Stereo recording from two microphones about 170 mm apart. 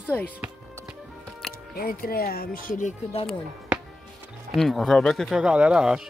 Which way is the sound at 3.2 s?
5° right (ahead or behind).